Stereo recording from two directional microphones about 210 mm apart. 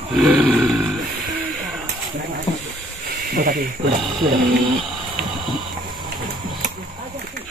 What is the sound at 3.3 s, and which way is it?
Speech, 45° right (ahead or behind).